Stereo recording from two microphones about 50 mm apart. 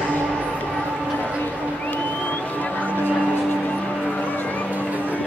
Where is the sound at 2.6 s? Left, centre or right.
Left.